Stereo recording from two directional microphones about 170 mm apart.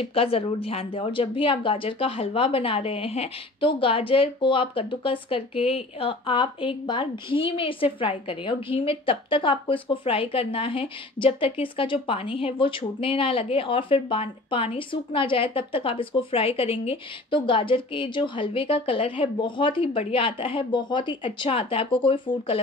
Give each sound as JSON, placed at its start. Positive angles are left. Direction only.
{"t": 0.0, "sound": "a woman's voice", "side_deg": 35}